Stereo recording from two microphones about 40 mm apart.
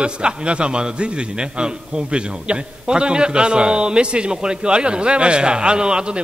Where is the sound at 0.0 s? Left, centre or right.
Right.